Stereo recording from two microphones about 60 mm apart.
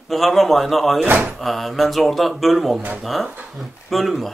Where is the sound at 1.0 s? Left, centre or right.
Right.